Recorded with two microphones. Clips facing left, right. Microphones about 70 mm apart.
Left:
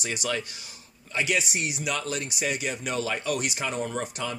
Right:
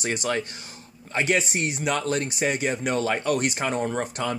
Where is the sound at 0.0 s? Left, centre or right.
Right.